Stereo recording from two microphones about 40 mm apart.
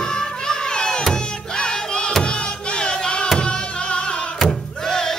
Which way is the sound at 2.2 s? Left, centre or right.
Left.